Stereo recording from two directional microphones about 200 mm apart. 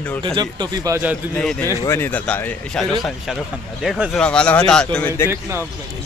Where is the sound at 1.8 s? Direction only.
10° left (ahead or behind).